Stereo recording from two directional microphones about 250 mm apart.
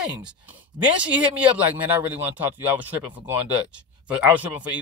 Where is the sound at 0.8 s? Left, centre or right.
Centre.